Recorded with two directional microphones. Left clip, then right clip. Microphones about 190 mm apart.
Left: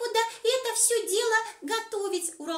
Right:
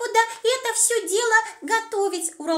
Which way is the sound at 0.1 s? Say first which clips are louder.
Right 6 dB; 30° right (ahead or behind).